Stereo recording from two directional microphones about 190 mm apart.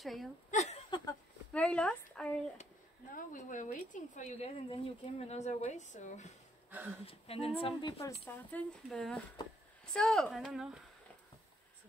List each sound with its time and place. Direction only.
0.0 s speech: centre (ahead or behind)
0.5 s a sound: 35° left (ahead or behind)
1.5 s speech: 5° left (ahead or behind)
2.5 s speech: 40° left (ahead or behind)
6.7 s speech: 10° right (ahead or behind)
7.1 s a woman's voice: 30° left (ahead or behind)
8.3 s a woman's voice: 5° left (ahead or behind)